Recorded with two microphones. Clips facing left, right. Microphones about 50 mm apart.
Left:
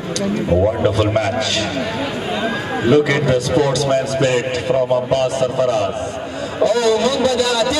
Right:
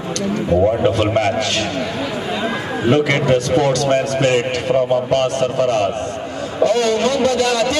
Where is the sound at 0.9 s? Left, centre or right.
Right.